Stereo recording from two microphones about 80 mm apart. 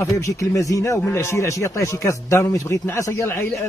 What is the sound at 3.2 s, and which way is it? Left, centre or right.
Speech, left.